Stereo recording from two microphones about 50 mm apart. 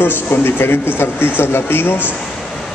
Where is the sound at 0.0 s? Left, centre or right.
Left.